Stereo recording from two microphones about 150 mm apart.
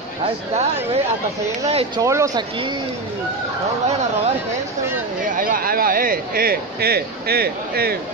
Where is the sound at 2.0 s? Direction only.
20° right (ahead or behind).